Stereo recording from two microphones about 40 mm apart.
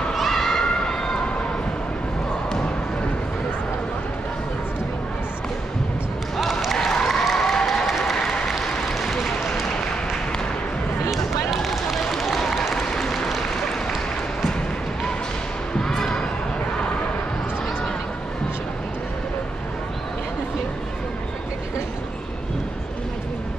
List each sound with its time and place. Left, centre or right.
0.3 s crowd: centre
6.3 s a sound: centre
6.7 s applause: centre
11.1 s run: centre
12.8 s applause: centre
15.8 s basketball bounce: centre